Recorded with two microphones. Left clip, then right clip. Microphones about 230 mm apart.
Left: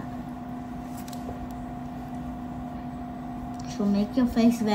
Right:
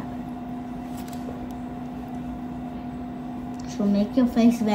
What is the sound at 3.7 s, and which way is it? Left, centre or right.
A woman's voice, left.